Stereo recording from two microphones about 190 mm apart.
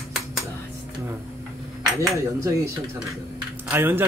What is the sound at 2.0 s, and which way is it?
Speech, 15° right (ahead or behind).